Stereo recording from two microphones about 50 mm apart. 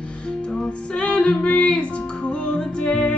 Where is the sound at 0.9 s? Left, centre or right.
Centre.